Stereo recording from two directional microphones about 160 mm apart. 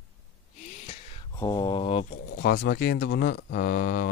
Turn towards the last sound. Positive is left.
turn(degrees=65)  # may be behind; listen again after turning